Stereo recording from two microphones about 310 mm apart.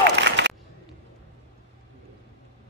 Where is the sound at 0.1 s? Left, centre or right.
Right.